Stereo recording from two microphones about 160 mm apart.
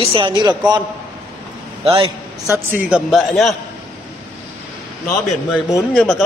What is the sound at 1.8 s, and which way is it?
Speech, 35° right (ahead or behind).